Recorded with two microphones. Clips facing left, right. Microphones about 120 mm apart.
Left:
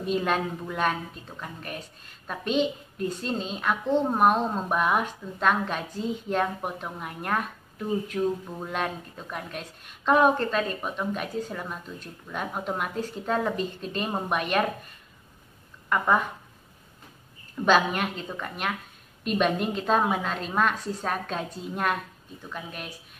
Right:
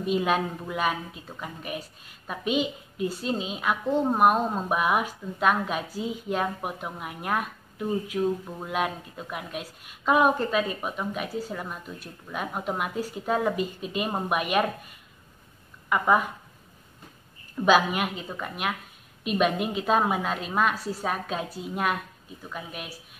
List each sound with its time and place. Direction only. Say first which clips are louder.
0.0 s a woman's voice: right 1 dB; 5° right (ahead or behind)
15.9 s a woman's voice: right 1 dB; 5° right (ahead or behind)
17.6 s a woman's voice: right 1 dB; 5° right (ahead or behind)